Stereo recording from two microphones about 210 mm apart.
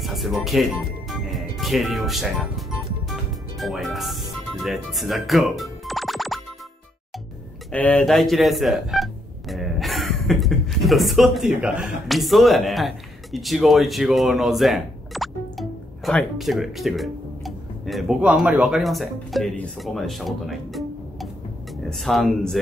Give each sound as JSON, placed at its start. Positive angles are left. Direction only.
{"t": 0.0, "sound": "speech", "side_deg": 0}
{"t": 3.1, "sound": "music", "side_deg": 0}
{"t": 7.7, "sound": "speech", "side_deg": 5}